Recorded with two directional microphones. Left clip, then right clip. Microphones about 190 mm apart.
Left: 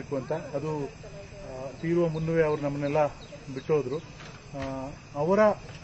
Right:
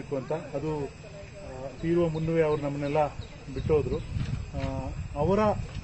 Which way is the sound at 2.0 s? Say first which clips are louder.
Left 1 dB; 15° right (ahead or behind).